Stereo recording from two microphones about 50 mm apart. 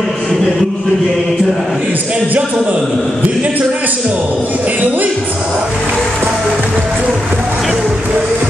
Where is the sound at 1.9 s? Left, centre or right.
Right.